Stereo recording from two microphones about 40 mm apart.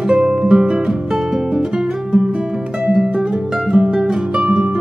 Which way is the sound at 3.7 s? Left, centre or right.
Centre.